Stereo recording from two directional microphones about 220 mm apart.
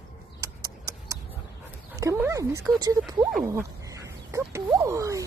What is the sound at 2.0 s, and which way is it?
Speech, 10° right (ahead or behind).